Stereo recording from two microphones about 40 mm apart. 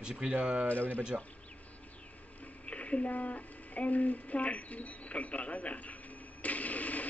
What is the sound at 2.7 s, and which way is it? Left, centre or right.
A woman's voice, left.